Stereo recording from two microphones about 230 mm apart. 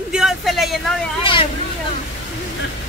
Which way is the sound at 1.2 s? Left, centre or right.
Left.